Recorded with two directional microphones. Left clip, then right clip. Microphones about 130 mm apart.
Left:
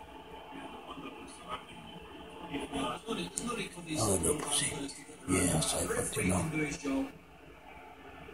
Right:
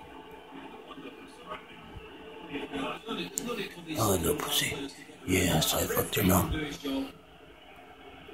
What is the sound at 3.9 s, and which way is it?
Music, 5° right (ahead or behind).